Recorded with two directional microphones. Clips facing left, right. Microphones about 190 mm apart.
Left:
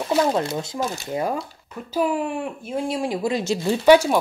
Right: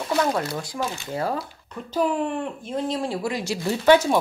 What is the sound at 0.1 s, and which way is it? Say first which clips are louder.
Speech: left 3 dB; 25° left (ahead or behind).